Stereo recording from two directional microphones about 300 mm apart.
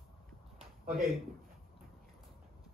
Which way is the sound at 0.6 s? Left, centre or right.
Right.